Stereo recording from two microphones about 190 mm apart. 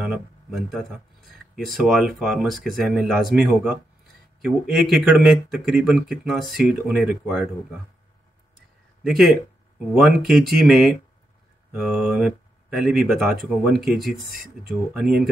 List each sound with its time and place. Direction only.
0.0 s speech: 5° right (ahead or behind)
9.0 s speech: centre (ahead or behind)